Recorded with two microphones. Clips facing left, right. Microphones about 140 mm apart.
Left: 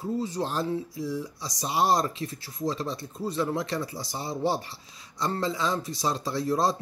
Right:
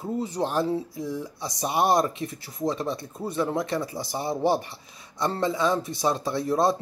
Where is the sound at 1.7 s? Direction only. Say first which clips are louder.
Right 2 dB; 55° right (ahead or behind).